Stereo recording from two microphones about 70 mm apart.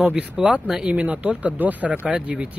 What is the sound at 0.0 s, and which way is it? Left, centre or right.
Speech, centre.